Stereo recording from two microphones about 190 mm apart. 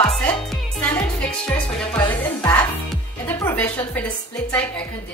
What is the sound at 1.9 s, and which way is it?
Speech, 10° left (ahead or behind).